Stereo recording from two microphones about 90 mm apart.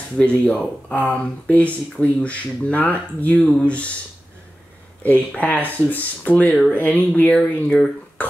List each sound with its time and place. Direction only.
0.2 s speech: 15° left (ahead or behind)
5.0 s speech: 20° left (ahead or behind)
8.2 s speech: 20° left (ahead or behind)